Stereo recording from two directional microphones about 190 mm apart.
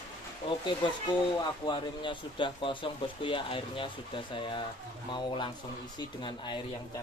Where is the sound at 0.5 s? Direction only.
25° left (ahead or behind).